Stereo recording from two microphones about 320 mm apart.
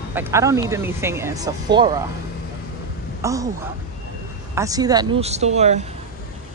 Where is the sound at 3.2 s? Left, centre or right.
Centre.